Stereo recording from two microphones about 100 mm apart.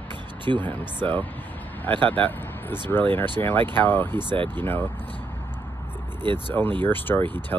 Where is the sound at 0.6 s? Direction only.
20° left (ahead or behind).